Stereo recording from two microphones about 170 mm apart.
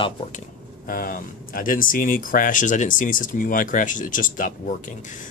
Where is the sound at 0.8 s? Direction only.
55° left (ahead or behind).